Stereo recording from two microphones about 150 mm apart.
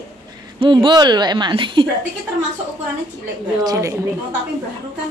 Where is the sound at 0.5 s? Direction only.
35° right (ahead or behind).